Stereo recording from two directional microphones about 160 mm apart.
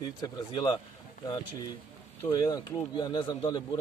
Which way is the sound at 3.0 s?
25° left (ahead or behind).